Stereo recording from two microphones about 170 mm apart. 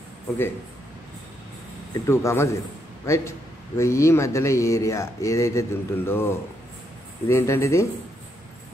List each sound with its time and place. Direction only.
2.0 s speech: 15° left (ahead or behind)